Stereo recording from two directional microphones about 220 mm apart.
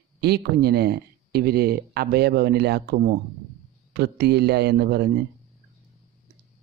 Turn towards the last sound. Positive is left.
turn(degrees=-45)  # may be behind; listen again after turning